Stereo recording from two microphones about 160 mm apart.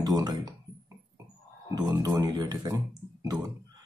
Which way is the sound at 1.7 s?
20° right (ahead or behind).